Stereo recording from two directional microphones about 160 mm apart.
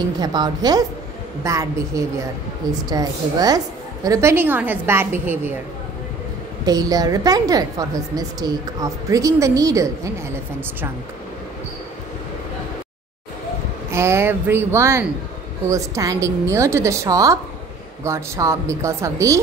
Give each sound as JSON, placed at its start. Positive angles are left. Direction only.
{"t": 0.2, "sound": "a woman's voice", "side_deg": -25}
{"t": 6.6, "sound": "a woman's voice", "side_deg": -25}
{"t": 13.9, "sound": "a woman's voice", "side_deg": -15}